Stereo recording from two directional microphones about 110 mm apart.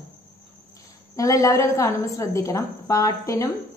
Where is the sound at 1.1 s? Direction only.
30° left (ahead or behind).